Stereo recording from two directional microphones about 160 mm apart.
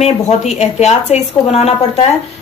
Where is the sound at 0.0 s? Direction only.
45° left (ahead or behind).